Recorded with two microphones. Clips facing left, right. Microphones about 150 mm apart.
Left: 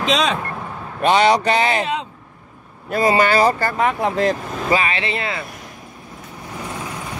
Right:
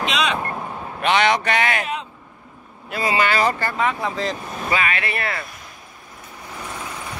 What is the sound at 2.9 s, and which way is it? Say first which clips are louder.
Speech: left 5 dB; 40° left (ahead or behind).